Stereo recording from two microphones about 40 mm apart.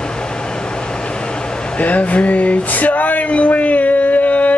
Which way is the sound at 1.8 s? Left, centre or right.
Left.